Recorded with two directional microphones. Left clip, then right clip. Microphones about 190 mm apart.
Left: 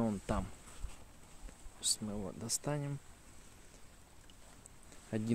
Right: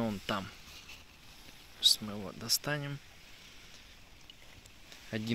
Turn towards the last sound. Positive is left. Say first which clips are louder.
# right 1 dB
turn(degrees=10)  # may be behind; listen again after turning